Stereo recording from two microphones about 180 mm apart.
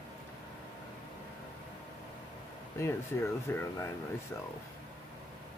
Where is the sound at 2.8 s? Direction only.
15° left (ahead or behind).